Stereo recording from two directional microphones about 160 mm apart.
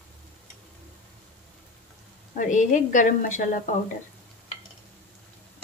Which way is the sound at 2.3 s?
55° left (ahead or behind).